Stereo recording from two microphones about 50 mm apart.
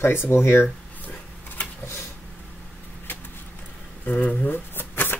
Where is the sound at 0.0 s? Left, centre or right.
Left.